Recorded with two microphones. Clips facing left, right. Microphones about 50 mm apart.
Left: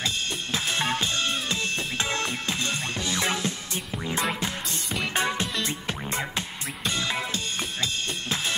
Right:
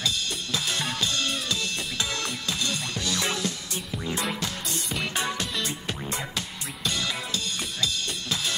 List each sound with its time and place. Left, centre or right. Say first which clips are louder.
0.0 s drum kit: even; left
4.1 s music: left 2 dB; left